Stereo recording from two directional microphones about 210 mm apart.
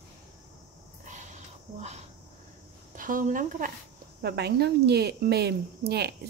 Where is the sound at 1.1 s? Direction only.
35° right (ahead or behind).